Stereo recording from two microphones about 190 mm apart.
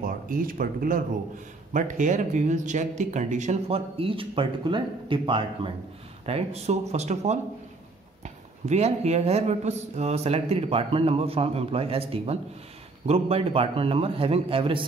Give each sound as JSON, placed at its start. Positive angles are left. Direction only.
{"t": 0.0, "sound": "a man's voice", "side_deg": -45}